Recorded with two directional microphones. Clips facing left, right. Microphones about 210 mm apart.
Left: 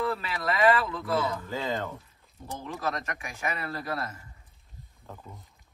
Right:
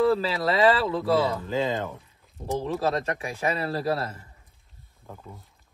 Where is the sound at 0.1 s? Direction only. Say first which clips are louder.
Right 7 dB; 30° right (ahead or behind).